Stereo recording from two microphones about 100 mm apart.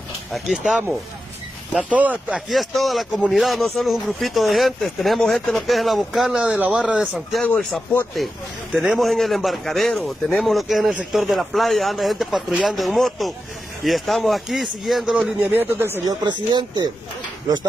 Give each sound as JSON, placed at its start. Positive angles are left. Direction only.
{"t": 0.3, "sound": "a man's voice", "side_deg": 0}
{"t": 1.9, "sound": "speech", "side_deg": -15}
{"t": 2.5, "sound": "a man's voice", "side_deg": 0}
{"t": 7.0, "sound": "a man's voice", "side_deg": 0}
{"t": 15.5, "sound": "speech", "side_deg": -20}
{"t": 16.1, "sound": "speech", "side_deg": -45}